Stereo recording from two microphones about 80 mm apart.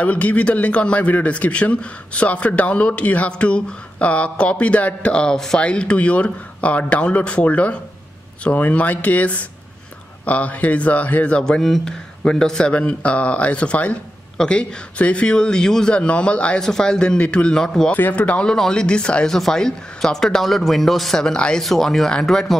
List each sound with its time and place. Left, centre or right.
0.0 s a man's voice: centre
17.9 s a man's voice: left; by 22.6 s centre